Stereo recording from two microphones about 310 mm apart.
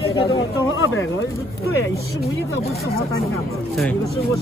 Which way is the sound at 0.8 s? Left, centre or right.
Left.